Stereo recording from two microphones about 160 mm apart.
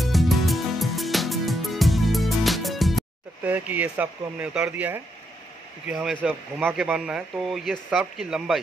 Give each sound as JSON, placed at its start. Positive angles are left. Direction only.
{"t": 0.0, "sound": "music", "side_deg": 0}
{"t": 3.4, "sound": "speech", "side_deg": -10}